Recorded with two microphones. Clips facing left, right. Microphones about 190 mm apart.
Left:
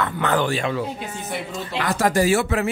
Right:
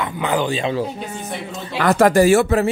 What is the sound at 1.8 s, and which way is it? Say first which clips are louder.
Speech: right 7 dB; 55° right (ahead or behind).